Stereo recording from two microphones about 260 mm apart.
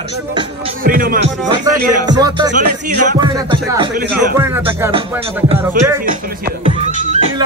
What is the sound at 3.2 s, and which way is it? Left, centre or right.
Speech, centre.